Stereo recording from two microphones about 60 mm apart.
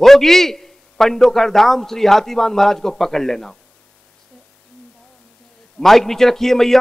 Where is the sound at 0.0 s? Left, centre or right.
Centre.